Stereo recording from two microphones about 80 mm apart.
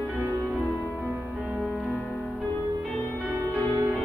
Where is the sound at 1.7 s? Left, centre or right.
Centre.